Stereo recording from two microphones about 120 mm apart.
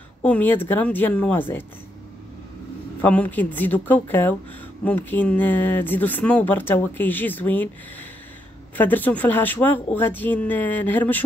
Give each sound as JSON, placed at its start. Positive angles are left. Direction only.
{"t": 0.2, "sound": "speech", "side_deg": 15}
{"t": 3.0, "sound": "speech", "side_deg": 15}
{"t": 8.7, "sound": "speech", "side_deg": 15}